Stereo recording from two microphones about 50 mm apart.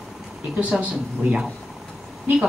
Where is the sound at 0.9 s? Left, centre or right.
Centre.